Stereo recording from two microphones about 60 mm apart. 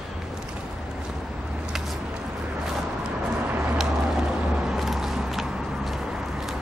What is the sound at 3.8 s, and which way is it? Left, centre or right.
Vehicle, centre.